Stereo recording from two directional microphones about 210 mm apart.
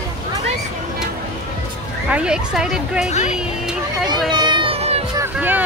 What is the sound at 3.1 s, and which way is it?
Speech, 35° left (ahead or behind).